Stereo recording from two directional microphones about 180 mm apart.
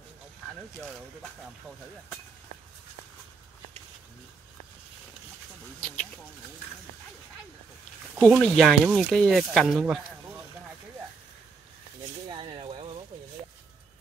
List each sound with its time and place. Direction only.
5.8 s speech: 5° left (ahead or behind)
8.4 s speech: centre (ahead or behind)
12.3 s a sound: 25° right (ahead or behind)